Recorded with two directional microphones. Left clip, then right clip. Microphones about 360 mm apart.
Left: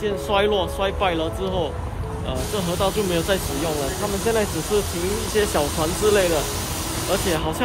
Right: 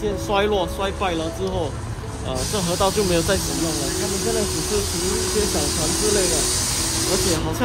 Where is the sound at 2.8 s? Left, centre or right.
Centre.